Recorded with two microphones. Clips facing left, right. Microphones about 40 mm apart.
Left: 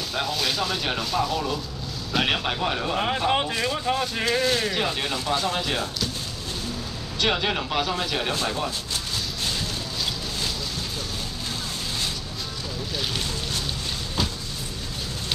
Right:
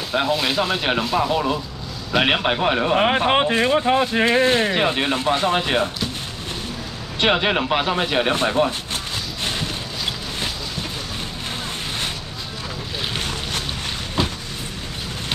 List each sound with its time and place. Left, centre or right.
0.1 s speech: right
7.2 s speech: right
9.4 s boat: right
13.1 s boat: right
14.2 s a sound: right